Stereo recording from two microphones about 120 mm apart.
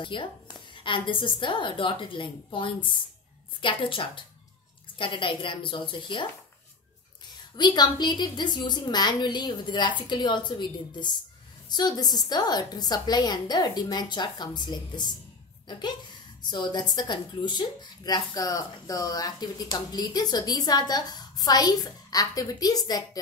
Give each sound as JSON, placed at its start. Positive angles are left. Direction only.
{"t": 0.0, "sound": "a woman's voice", "side_deg": 45}
{"t": 7.5, "sound": "a woman's voice", "side_deg": 35}